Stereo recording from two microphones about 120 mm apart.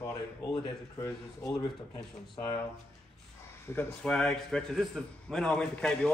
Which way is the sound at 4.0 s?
5° left (ahead or behind).